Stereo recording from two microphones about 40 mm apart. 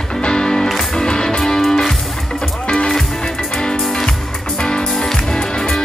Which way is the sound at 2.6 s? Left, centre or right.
Left.